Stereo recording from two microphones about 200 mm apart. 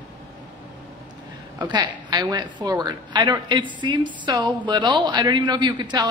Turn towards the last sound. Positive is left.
turn(degrees=-20)  # may be behind; listen again after turning